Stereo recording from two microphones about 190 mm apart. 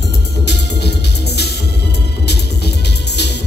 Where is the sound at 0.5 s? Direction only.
60° left (ahead or behind).